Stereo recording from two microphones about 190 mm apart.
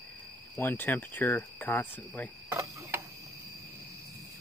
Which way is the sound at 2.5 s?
15° right (ahead or behind).